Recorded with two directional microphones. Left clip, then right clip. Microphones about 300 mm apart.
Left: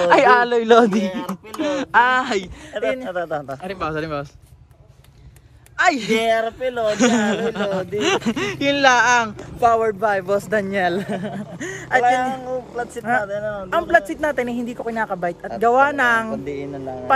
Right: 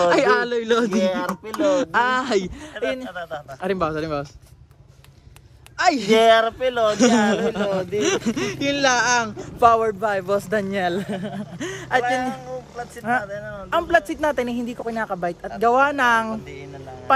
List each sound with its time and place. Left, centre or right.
0.0 s a man's voice: centre
2.8 s a man's voice: left
3.8 s a man's voice: centre
5.8 s a man's voice: centre
12.0 s a man's voice: centre
13.7 s a man's voice: centre